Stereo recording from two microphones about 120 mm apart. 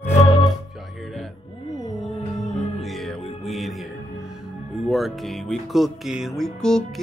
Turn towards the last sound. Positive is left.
turn(degrees=5)  # may be behind; listen again after turning